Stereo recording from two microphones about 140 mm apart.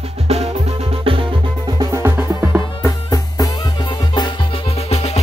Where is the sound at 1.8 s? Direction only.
20° right (ahead or behind).